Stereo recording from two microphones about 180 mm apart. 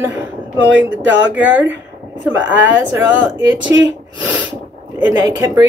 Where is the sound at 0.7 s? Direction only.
90° right.